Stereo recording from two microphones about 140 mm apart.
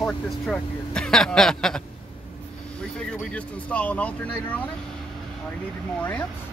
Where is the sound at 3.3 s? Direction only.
10° left (ahead or behind).